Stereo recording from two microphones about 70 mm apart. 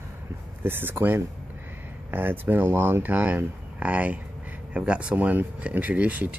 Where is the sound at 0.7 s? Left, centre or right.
Right.